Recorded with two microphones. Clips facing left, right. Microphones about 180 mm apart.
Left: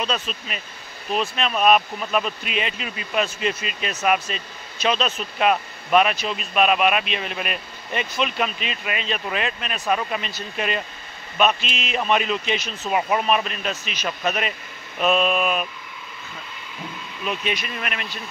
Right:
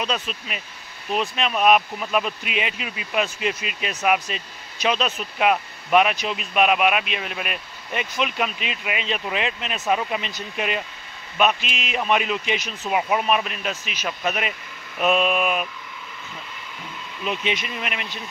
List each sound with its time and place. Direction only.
0.0 s speech: 15° right (ahead or behind)
17.2 s speech: 20° right (ahead or behind)